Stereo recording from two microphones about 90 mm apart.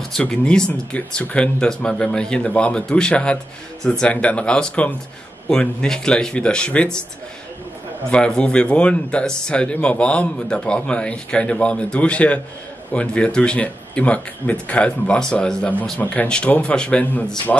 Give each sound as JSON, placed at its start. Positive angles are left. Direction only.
{"t": 0.1, "sound": "speech", "side_deg": 10}
{"t": 8.1, "sound": "speech", "side_deg": 10}